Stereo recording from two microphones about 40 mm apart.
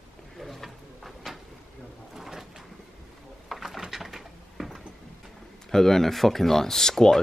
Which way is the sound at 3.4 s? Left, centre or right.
Centre.